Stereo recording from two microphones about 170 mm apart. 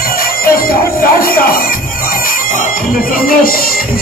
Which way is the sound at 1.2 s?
60° left (ahead or behind).